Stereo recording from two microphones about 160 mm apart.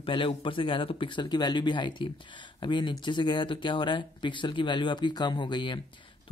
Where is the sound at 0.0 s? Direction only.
35° left (ahead or behind).